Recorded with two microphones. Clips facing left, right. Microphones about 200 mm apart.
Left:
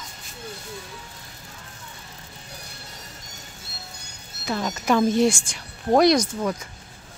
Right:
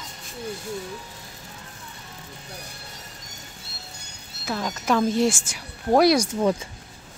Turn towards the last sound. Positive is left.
turn(degrees=-25)  # may be behind; listen again after turning